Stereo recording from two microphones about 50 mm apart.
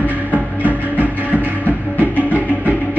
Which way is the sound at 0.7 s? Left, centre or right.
Right.